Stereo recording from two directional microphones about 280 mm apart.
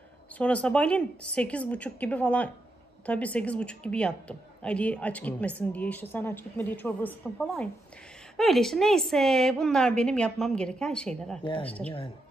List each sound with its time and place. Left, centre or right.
0.4 s a woman's voice: centre
11.4 s a woman's voice: centre